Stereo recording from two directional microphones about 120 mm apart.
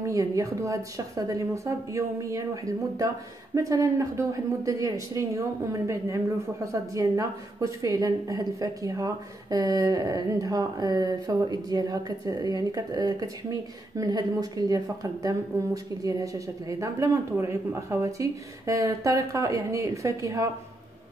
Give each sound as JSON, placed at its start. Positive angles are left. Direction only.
{"t": 0.0, "sound": "a woman's voice", "side_deg": -25}